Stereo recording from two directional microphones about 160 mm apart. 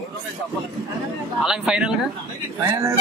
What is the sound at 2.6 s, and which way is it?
Speech, 20° right (ahead or behind).